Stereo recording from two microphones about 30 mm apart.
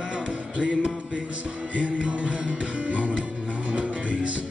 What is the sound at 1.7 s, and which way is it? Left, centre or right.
Music, right.